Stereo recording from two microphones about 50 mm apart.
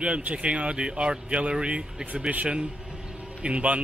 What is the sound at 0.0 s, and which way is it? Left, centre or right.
A man's voice, right.